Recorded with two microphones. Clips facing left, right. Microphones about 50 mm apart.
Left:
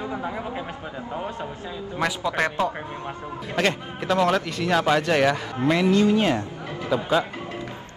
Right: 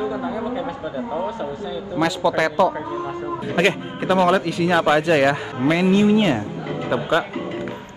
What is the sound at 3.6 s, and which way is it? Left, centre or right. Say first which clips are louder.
A man's voice: right 4 dB; centre.